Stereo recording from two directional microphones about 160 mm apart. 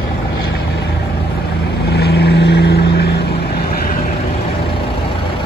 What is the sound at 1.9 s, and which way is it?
Vehicle, 90° left.